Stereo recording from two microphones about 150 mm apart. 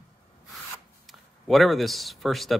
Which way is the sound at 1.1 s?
Centre (ahead or behind).